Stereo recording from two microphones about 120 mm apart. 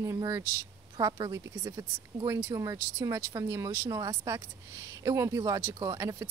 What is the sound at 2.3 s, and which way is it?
Speech, 20° right (ahead or behind).